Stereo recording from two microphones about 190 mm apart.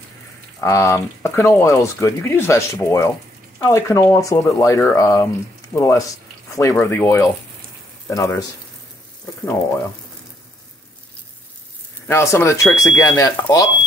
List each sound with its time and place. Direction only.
0.6 s speech: 15° left (ahead or behind)
12.1 s speech: 15° left (ahead or behind)